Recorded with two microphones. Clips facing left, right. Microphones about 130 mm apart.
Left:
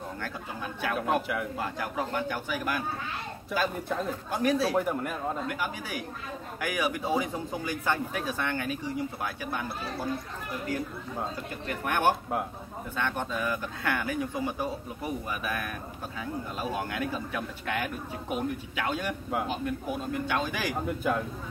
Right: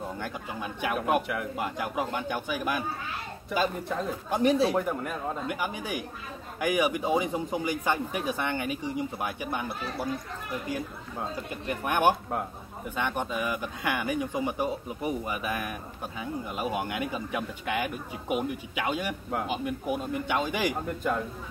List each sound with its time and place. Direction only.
0.2 s speech: 15° right (ahead or behind)
0.9 s speech: 5° right (ahead or behind)
1.6 s speech: 15° right (ahead or behind)
3.5 s speech: centre (ahead or behind)
4.3 s speech: 25° right (ahead or behind)
4.7 s speech: centre (ahead or behind)
5.5 s speech: 20° right (ahead or behind)
11.6 s speech: 15° right (ahead or behind)
20.8 s speech: 5° left (ahead or behind)